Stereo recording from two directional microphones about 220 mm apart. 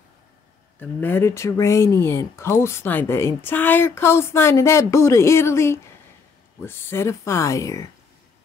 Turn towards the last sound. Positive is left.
turn(degrees=15)  # may be behind; listen again after turning